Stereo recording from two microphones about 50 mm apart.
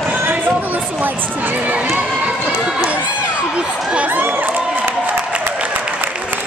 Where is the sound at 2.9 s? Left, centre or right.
Right.